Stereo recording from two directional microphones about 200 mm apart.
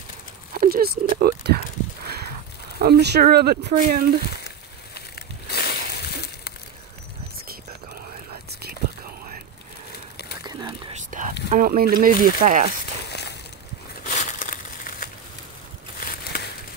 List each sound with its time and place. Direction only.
0.5 s a sound: 45° right (ahead or behind)
2.8 s speech: 55° right (ahead or behind)
4.9 s a sound: 50° left (ahead or behind)
10.4 s whispering: 20° right (ahead or behind)
11.0 s whispering: 40° right (ahead or behind)
11.5 s speech: 45° right (ahead or behind)
14.0 s crumpling: 40° left (ahead or behind)
16.1 s crumpling: 50° left (ahead or behind)